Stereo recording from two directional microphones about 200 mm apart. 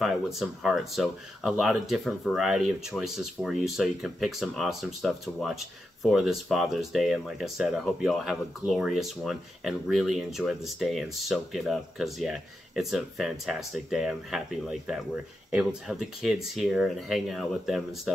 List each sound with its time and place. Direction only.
0.0 s speech: centre (ahead or behind)